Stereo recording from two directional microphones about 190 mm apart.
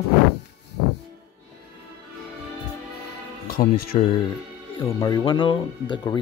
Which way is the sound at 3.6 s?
50° left (ahead or behind).